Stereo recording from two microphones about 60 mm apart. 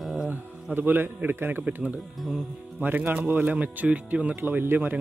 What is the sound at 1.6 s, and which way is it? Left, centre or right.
Speech, right.